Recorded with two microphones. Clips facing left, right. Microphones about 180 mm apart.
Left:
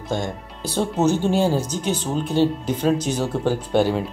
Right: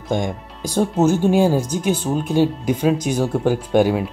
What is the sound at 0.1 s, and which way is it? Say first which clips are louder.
Speech: right 4 dB; 15° right (ahead or behind).